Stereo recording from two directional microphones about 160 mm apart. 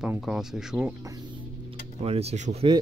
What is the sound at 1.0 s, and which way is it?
Music, 25° right (ahead or behind).